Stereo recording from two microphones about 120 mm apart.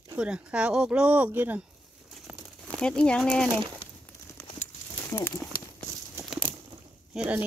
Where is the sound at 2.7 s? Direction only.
10° left (ahead or behind).